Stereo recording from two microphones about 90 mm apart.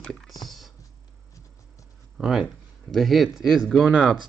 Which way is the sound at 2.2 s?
5° right (ahead or behind).